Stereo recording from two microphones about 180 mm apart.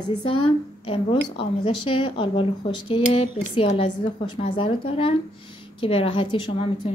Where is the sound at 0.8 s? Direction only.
30° left (ahead or behind).